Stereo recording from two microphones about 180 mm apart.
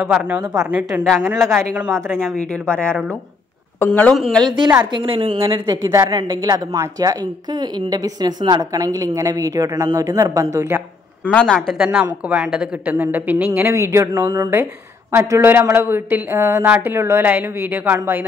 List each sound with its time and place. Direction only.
0.0 s a woman's voice: 5° right (ahead or behind)
1.6 s a woman's voice: 15° right (ahead or behind)
2.4 s a woman's voice: 5° left (ahead or behind)
4.9 s a woman's voice: 30° right (ahead or behind)
11.2 s a woman's voice: 5° left (ahead or behind); by 18.2 s 10° right (ahead or behind)